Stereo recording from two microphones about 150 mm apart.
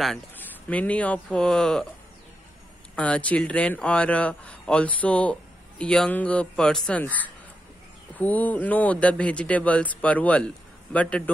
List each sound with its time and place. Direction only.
0.7 s speech: 10° left (ahead or behind)
3.0 s speech: 10° left (ahead or behind)